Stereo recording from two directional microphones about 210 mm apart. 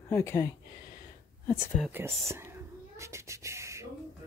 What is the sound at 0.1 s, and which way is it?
Speech, 15° left (ahead or behind).